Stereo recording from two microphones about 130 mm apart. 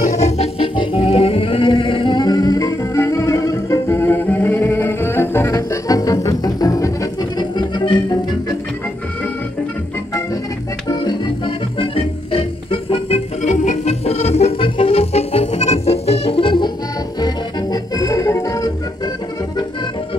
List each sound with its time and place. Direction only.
0.0 s music: 60° left (ahead or behind)
0.7 s music: 45° left (ahead or behind)
10.9 s music: 35° left (ahead or behind)
13.4 s music: 65° left (ahead or behind); by 16.7 s 40° left (ahead or behind)
17.2 s music: 30° left (ahead or behind)